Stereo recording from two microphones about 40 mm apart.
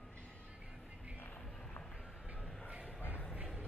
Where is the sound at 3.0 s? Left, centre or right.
Left.